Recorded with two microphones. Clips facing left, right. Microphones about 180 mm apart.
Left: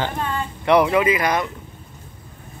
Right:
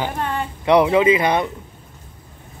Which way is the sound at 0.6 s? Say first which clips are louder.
Right 2 dB; 20° right (ahead or behind).